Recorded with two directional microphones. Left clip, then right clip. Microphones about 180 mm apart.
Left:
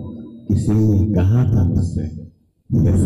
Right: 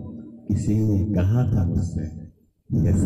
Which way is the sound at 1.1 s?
20° right (ahead or behind).